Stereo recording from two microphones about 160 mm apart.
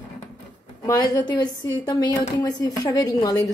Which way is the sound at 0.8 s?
20° left (ahead or behind).